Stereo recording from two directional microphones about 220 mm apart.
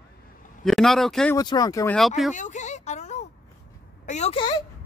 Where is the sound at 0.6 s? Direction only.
Centre (ahead or behind).